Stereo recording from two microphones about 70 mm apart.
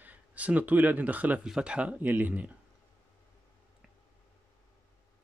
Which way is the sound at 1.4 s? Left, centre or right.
Centre.